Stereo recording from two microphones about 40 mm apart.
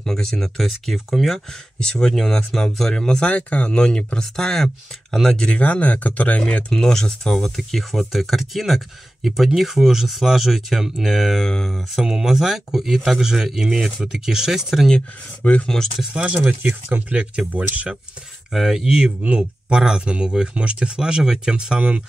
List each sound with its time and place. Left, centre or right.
0.0 s speech: centre
0.6 s speech: centre
1.8 s speech: centre
3.3 s speech: left
4.2 s speech: centre
5.6 s speech: left
6.7 s speech: centre
11.4 s speech: centre
12.0 s speech: centre
15.4 s speech: left
16.1 s speech: right
18.5 s speech: centre
18.9 s speech: right